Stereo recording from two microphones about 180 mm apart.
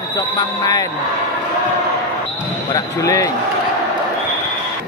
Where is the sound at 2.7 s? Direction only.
20° left (ahead or behind).